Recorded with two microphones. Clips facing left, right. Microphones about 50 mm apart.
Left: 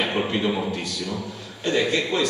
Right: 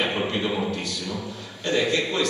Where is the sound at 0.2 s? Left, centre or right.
Centre.